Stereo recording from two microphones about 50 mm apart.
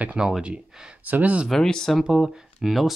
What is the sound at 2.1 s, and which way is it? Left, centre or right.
Speech, centre.